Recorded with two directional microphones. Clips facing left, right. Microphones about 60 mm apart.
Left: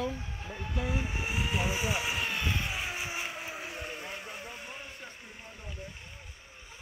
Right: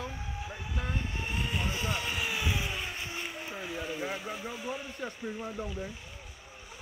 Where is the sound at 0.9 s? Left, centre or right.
Centre.